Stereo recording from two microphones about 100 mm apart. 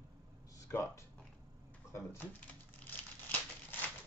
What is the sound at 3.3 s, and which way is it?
Crumpling, 20° left (ahead or behind).